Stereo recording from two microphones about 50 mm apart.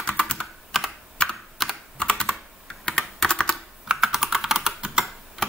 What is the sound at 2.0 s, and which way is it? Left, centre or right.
Computer keyboard, centre.